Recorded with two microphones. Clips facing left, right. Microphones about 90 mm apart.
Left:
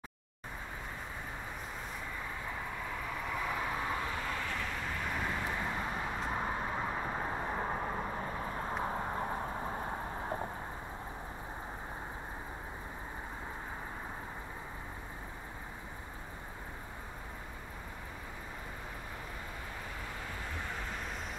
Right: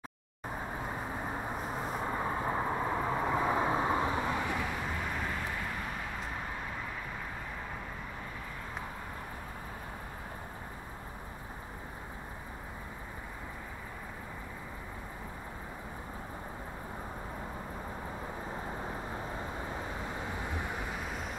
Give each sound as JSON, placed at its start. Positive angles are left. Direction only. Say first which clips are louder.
{"t": 1.8, "sound": "vehicle", "louder": "right 8 dB", "side_deg": -40}
{"t": 7.0, "sound": "vehicle", "louder": "left 5 dB", "side_deg": 35}
{"t": 20.2, "sound": "vehicle", "louder": "right 4 dB", "side_deg": -15}